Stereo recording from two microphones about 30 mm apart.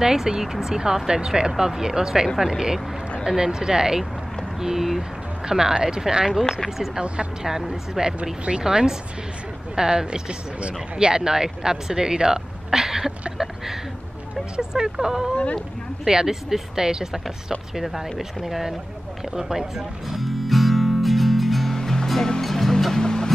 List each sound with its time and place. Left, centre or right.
0.0 s speech: centre
4.6 s a sound: centre
5.5 s speech: centre
7.4 s speech: centre
8.2 s speech: right
8.6 s speech: right
10.6 s speech: right; by 13.1 s centre
14.6 s speech: right
20.2 s music: centre
21.8 s music: centre
22.9 s music: left